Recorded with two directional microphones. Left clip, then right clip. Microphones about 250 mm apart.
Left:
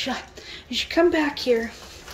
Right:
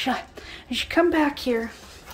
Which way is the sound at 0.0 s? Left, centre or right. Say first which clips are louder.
Right 2 dB; centre.